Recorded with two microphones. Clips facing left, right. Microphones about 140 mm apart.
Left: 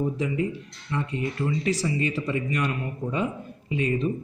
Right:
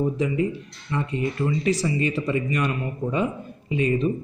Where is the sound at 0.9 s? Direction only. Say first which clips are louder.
Right 3 dB; 25° right (ahead or behind).